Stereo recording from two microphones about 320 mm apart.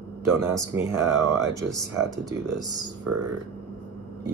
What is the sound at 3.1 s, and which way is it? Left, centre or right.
Speech, right.